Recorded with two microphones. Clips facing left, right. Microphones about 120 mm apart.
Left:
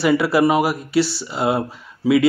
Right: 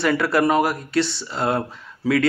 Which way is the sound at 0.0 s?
5° left (ahead or behind).